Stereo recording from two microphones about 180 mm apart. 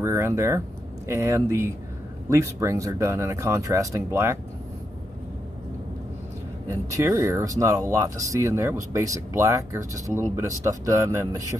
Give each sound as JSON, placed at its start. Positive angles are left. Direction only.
{"t": 0.0, "sound": "speech", "side_deg": -15}
{"t": 6.7, "sound": "speech", "side_deg": -15}